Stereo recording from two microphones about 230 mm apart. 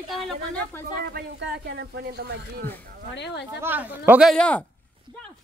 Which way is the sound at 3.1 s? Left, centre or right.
Left.